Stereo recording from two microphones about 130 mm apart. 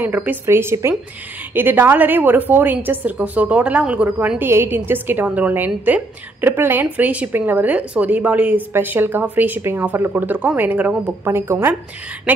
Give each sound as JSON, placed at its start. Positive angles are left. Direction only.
{"t": 0.0, "sound": "a woman's voice", "side_deg": -15}